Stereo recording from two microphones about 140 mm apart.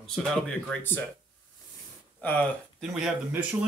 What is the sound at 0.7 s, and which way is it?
Speech, 15° left (ahead or behind).